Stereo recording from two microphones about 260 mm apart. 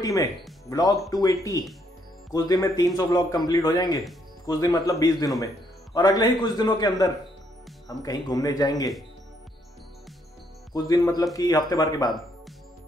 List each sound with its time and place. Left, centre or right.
0.0 s a man's voice: centre
10.7 s a man's voice: centre